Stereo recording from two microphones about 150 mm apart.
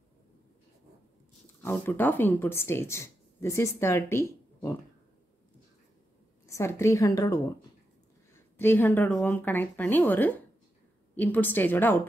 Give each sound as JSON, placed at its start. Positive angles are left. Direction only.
{"t": 1.6, "sound": "speech", "side_deg": 15}
{"t": 6.4, "sound": "a woman's voice", "side_deg": 20}
{"t": 8.5, "sound": "speech", "side_deg": 15}